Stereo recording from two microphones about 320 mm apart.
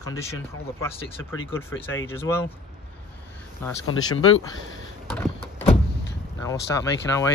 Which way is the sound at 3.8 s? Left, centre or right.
Left.